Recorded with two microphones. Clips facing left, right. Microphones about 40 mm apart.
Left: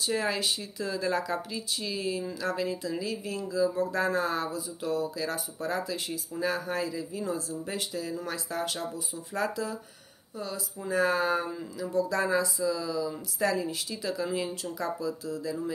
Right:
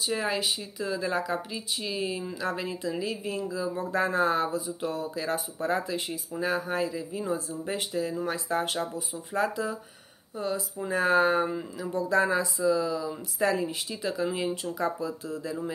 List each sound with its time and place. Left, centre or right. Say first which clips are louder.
0.0 s speech: even; centre; by 15.5 s right